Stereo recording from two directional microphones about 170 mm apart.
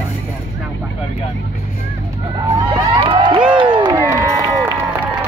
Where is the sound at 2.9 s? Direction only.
30° right (ahead or behind).